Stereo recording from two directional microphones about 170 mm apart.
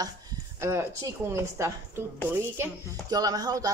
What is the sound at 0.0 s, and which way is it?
A woman's voice, 20° right (ahead or behind).